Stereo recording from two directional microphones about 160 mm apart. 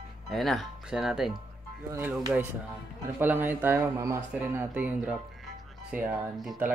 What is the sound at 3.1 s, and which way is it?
Speech, 15° right (ahead or behind).